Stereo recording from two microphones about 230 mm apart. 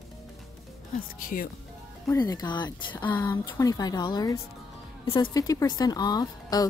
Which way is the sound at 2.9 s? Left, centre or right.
Centre.